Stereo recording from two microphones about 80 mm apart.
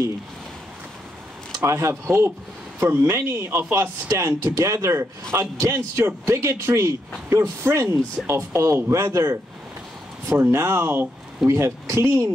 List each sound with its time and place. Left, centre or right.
1.6 s speech: right
10.5 s speech: right